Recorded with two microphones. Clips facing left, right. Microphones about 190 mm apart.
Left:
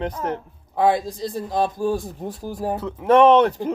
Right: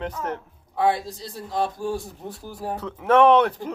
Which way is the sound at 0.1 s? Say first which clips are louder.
Left 3 dB; 40° left (ahead or behind).